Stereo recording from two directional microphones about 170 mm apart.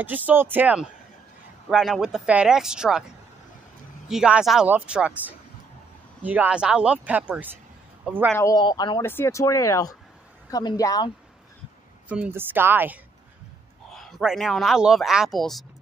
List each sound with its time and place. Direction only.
0.0 s speech: 10° right (ahead or behind)
4.1 s a woman's voice: 5° right (ahead or behind)
8.4 s speech: 20° left (ahead or behind)
9.0 s speech: 15° left (ahead or behind)
12.1 s speech: 10° right (ahead or behind)
13.8 s speech: centre (ahead or behind)